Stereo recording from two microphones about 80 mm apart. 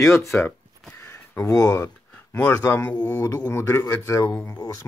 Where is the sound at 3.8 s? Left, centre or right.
Left.